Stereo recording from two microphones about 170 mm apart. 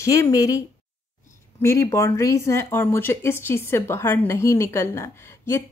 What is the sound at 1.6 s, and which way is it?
Speech, 15° left (ahead or behind).